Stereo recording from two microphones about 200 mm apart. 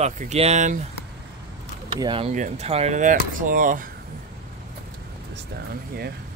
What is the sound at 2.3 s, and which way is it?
Speech, 35° right (ahead or behind).